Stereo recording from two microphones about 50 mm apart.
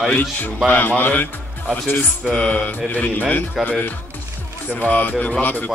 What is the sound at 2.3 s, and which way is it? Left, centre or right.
Mantra, left.